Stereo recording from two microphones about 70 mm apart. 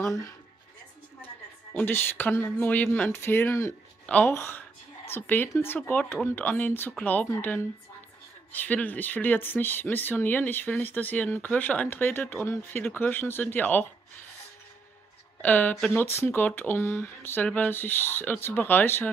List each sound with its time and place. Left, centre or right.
0.0 s speech: left
1.2 s music: centre
1.9 s speech: left
3.1 s speech: left
4.0 s a sound: centre
4.3 s speech: left
5.1 s speech: left
8.5 s speech: left
15.4 s speech: left